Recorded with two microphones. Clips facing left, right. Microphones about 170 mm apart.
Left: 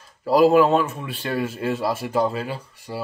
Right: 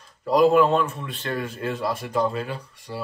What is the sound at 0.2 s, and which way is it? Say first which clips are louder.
Speech: left 2 dB; 5° left (ahead or behind).